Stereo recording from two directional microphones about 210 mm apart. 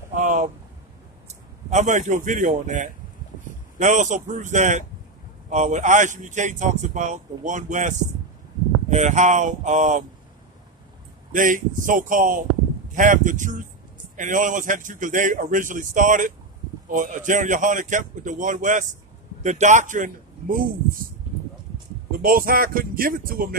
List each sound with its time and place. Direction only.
0.1 s a sound: 35° right (ahead or behind)
1.7 s speech: 35° right (ahead or behind)
11.3 s speech: 40° right (ahead or behind)
22.2 s speech: 45° right (ahead or behind)